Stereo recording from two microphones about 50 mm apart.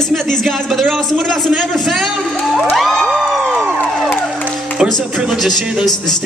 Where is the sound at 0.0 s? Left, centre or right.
Centre.